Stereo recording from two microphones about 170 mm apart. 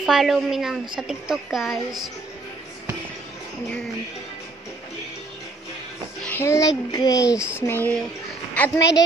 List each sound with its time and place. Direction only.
0.0 s a woman's voice: centre (ahead or behind)
6.2 s a sound: 15° left (ahead or behind)
6.9 s a child's voice: 20° left (ahead or behind)